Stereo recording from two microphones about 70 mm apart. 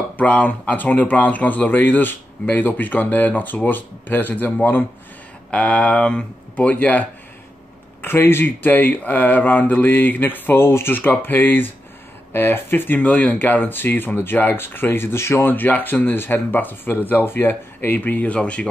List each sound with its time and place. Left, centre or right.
0.2 s speech: left
8.0 s speech: left; by 18.7 s centre